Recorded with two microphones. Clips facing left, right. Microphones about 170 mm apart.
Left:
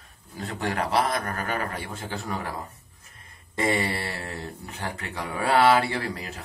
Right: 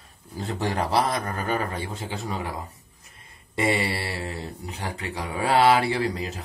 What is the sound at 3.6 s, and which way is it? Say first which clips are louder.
A man's voice: right 1 dB; 15° right (ahead or behind).